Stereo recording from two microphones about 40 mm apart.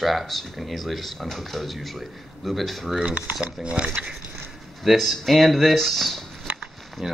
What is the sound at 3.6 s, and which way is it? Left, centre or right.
Speech, right.